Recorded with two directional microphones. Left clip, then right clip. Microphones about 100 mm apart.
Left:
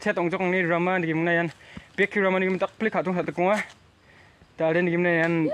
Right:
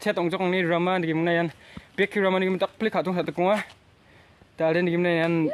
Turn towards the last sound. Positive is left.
turn(degrees=-15)  # may be behind; listen again after turning